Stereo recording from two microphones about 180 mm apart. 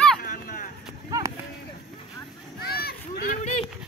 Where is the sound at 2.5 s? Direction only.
60° left (ahead or behind).